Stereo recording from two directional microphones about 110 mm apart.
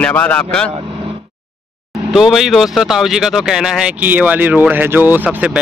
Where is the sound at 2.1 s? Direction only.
5° right (ahead or behind).